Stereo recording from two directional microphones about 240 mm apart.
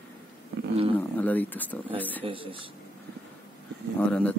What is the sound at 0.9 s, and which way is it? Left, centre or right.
Speech, centre.